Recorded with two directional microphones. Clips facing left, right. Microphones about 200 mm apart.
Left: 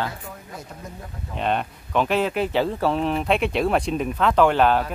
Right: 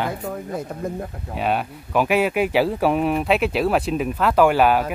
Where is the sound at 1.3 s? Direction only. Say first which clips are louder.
Right 1 dB; 5° right (ahead or behind).